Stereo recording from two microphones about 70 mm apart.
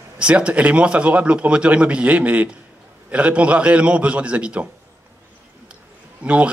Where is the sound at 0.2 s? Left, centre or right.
Centre.